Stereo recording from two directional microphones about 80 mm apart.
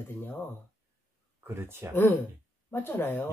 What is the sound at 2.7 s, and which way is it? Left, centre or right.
Speech, left.